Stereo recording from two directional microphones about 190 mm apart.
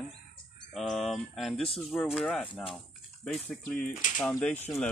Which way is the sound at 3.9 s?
40° left (ahead or behind).